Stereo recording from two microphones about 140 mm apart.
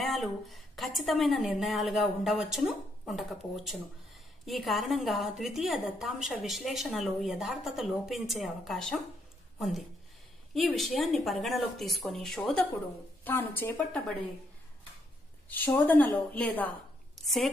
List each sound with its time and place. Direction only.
0.0 s a woman's voice: centre (ahead or behind)
15.4 s a woman's voice: 10° left (ahead or behind)
17.1 s a sound: centre (ahead or behind)